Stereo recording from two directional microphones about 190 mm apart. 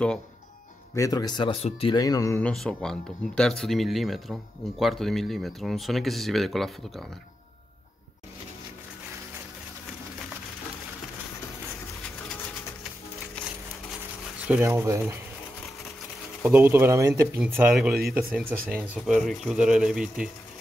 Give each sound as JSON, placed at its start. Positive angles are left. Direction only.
{"t": 0.9, "sound": "speech", "side_deg": 20}
{"t": 2.5, "sound": "speech", "side_deg": 5}
{"t": 14.5, "sound": "speech", "side_deg": -15}
{"t": 16.4, "sound": "speech", "side_deg": -10}